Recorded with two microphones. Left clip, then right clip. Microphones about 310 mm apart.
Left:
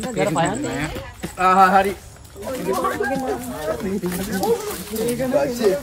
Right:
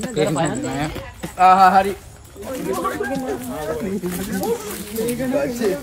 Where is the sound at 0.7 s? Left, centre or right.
Centre.